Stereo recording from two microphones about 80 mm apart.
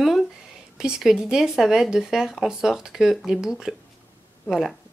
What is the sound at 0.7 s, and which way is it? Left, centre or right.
Speech, centre.